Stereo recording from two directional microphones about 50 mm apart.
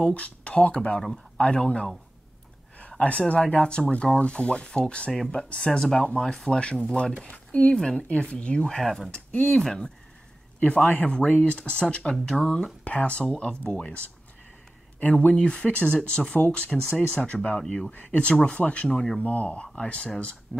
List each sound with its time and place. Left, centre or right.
0.0 s a man's voice: left
3.0 s speech: left
5.7 s speech: centre
5.9 s speech: centre
7.7 s speech: centre
8.1 s speech: left
10.9 s speech: left
12.8 s speech: left
15.2 s speech: left
19.2 s speech: left